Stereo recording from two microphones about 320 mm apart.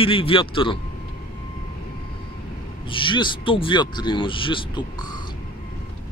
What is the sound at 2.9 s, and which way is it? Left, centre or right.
A man's voice, centre.